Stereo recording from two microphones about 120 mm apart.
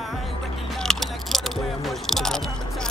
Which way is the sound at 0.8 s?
5° left (ahead or behind).